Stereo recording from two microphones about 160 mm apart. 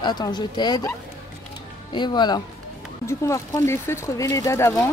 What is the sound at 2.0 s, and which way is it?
A woman's voice, 25° left (ahead or behind).